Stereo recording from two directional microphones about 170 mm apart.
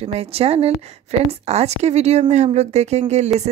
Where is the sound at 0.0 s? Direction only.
35° right (ahead or behind).